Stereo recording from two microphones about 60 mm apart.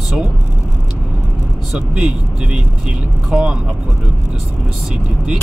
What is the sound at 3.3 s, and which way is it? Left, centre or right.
Speech, centre.